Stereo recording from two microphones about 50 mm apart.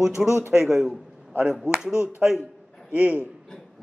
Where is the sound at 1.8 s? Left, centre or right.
Centre.